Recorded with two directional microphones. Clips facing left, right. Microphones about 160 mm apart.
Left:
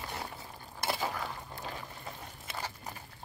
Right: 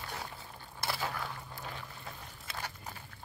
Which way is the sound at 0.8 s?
15° left (ahead or behind).